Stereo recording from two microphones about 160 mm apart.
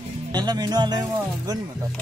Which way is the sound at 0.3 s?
25° right (ahead or behind).